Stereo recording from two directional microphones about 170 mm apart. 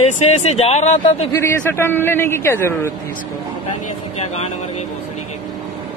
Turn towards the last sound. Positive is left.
turn(degrees=40)  # may be behind; listen again after turning